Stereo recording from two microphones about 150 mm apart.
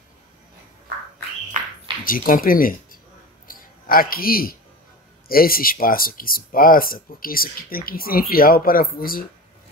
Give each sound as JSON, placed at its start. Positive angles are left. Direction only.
{"t": 2.0, "sound": "speech", "side_deg": 70}
{"t": 3.4, "sound": "a sound", "side_deg": 70}
{"t": 5.3, "sound": "speech", "side_deg": 75}